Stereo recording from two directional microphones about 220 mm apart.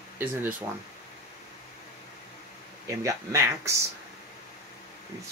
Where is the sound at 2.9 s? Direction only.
15° right (ahead or behind).